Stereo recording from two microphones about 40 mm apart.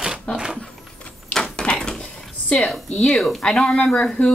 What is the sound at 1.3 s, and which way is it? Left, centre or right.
Door, centre.